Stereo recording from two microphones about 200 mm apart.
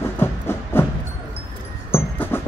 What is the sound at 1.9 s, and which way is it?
Music, 10° left (ahead or behind).